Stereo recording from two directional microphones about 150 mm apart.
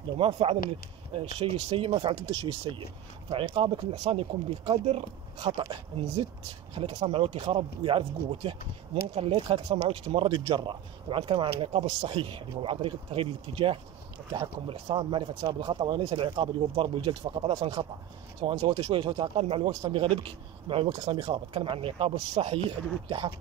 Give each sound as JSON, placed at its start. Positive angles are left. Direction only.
{"t": 0.2, "sound": "speech", "side_deg": -40}
{"t": 6.7, "sound": "speech", "side_deg": -40}